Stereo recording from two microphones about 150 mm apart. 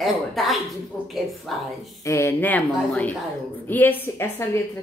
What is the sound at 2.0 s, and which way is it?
A woman's voice, 20° left (ahead or behind).